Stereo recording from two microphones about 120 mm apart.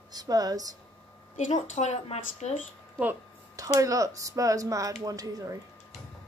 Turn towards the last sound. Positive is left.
turn(degrees=-30)  # may be behind; listen again after turning